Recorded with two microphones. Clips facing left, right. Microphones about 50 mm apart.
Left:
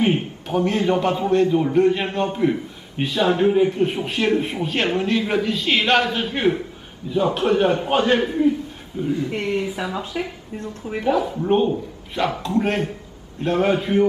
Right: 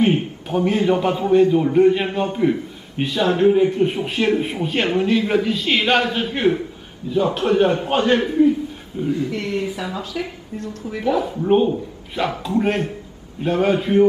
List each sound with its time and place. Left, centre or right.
0.0 s a man's voice: centre
9.3 s speech: left
9.6 s speech: centre
10.6 s speech: left
11.0 s a man's voice: centre